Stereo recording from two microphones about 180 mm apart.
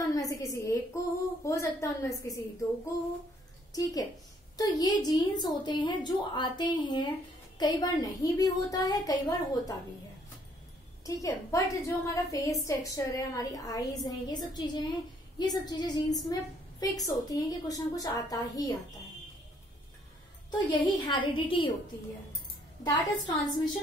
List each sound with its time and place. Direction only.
0.0 s a woman's voice: 20° left (ahead or behind)
11.1 s a woman's voice: 20° left (ahead or behind)
20.5 s a woman's voice: 25° left (ahead or behind)
22.8 s a woman's voice: 25° left (ahead or behind)